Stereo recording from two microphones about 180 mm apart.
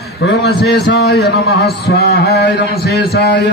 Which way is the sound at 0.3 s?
65° left (ahead or behind).